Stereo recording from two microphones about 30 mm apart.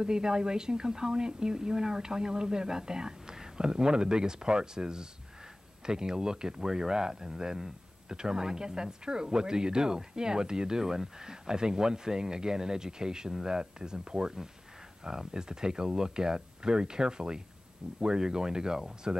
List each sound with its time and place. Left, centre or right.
0.0 s speech: right